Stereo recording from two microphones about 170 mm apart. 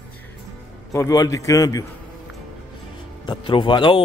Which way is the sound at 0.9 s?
20° left (ahead or behind).